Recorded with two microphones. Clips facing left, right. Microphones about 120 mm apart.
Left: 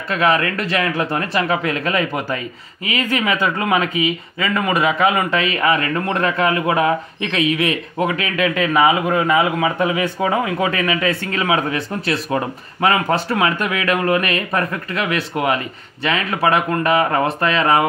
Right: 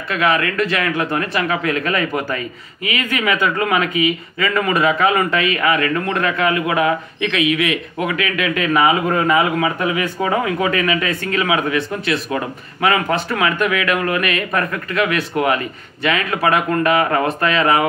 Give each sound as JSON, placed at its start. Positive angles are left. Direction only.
{"t": 0.1, "sound": "speech", "side_deg": 35}